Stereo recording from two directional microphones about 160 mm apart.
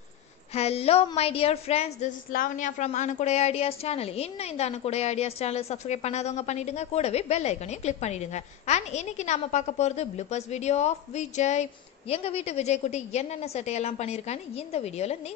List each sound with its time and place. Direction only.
0.5 s a woman's voice: 40° left (ahead or behind)